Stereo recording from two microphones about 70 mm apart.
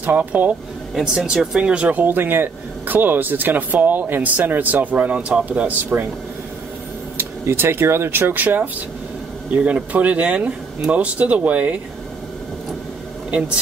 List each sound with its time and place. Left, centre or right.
0.0 s speech: right
0.9 s speech: centre
7.2 s speech: right